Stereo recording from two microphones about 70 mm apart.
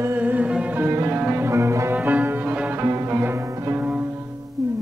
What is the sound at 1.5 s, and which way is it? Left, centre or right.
Music, right.